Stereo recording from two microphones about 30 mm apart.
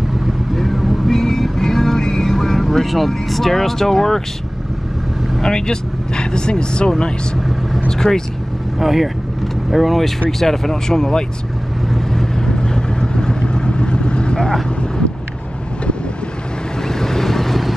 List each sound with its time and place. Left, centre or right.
0.6 s vehicle: centre
1.1 s music: centre
2.3 s speech: centre
5.4 s speech: left
7.9 s speech: centre
8.7 s speech: centre
10.4 s speech: centre
12.1 s vehicle: centre
16.8 s vehicle: centre